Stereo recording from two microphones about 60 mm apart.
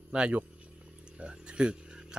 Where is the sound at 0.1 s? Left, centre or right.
Right.